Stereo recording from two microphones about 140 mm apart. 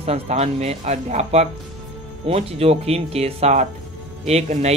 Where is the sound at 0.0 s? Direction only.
50° right (ahead or behind).